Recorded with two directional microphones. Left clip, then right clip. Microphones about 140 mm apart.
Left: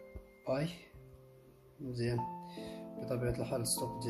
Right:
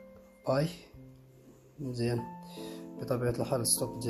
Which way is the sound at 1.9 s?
15° right (ahead or behind).